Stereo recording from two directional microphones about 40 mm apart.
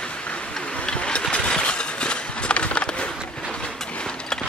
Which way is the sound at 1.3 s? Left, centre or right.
Left.